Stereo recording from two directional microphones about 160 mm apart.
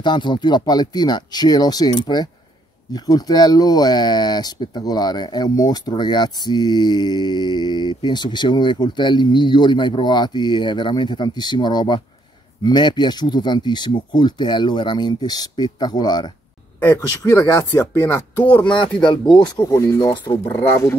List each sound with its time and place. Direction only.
0.0 s speech: 30° left (ahead or behind)
18.1 s speech: 10° left (ahead or behind)
19.7 s speech: 15° left (ahead or behind)
20.1 s speech: 30° left (ahead or behind)
20.4 s speech: 15° left (ahead or behind)